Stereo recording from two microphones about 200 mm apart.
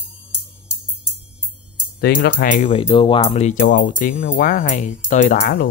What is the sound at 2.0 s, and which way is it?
Speech, 50° left (ahead or behind).